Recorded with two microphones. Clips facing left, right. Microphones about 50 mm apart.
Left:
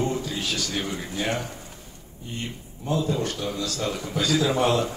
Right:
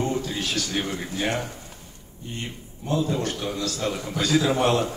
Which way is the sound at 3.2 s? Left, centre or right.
Centre.